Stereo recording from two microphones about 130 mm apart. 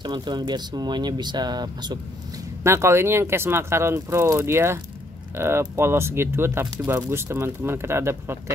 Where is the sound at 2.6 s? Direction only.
20° right (ahead or behind).